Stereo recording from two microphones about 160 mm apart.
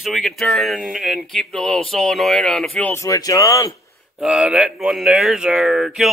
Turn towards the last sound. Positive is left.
turn(degrees=0)  # may be behind; listen again after turning